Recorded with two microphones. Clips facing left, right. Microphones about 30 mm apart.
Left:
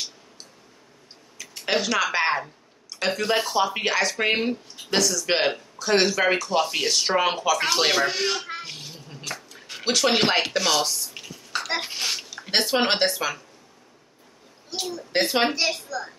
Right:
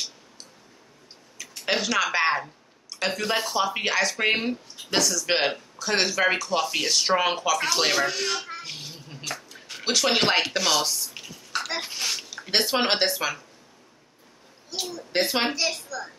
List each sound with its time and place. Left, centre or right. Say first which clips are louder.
1.7 s a woman's voice: left 1 dB; centre
8.1 s speech: left 2 dB; left
8.6 s a sound: even; centre
9.8 s dishes: left 1 dB; centre
11.7 s babbling: left 5 dB; centre
12.3 s speech: even; centre
14.7 s speech: left 1 dB; left
15.2 s speech: left 5 dB; centre
15.5 s a woman's voice: left 2 dB; centre